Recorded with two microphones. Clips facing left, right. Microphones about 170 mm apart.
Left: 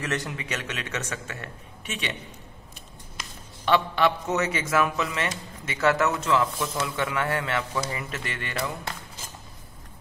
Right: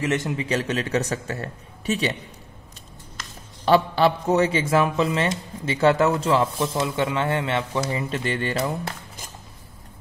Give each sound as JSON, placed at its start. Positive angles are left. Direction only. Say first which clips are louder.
{"t": 0.0, "sound": "a man's voice", "louder": "right 6 dB", "side_deg": -20}
{"t": 3.6, "sound": "a man's voice", "louder": "right 4 dB", "side_deg": -35}